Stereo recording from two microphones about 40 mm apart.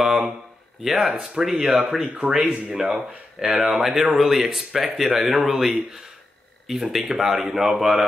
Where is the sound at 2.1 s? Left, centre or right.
Right.